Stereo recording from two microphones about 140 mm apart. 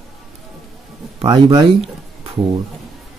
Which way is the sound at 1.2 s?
45° right (ahead or behind).